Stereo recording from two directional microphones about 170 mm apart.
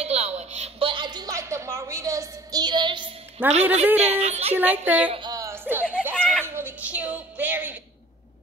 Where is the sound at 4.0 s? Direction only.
40° right (ahead or behind).